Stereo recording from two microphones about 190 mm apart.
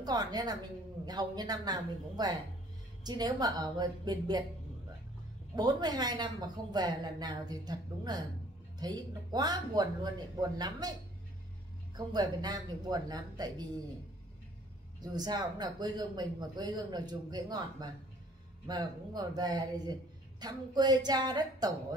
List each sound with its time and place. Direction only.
0.0 s speech: 20° right (ahead or behind)
5.6 s speech: 20° right (ahead or behind)
12.0 s speech: 20° right (ahead or behind)
15.0 s speech: 20° right (ahead or behind)